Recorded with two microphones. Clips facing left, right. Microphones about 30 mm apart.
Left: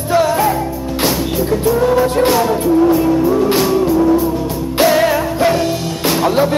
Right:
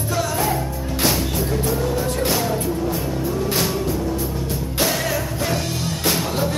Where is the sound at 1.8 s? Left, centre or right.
Left.